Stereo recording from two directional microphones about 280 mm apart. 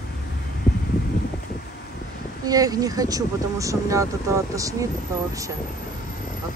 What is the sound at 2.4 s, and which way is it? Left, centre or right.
Speech, centre.